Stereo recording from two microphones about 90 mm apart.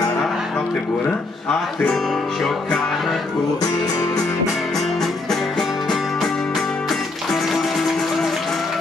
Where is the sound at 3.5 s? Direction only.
45° left (ahead or behind).